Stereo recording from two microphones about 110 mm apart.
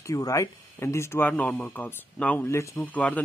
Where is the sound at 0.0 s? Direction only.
30° left (ahead or behind).